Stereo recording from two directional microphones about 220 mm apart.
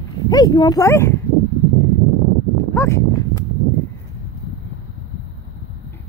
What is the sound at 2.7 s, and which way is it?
Speech, 15° left (ahead or behind).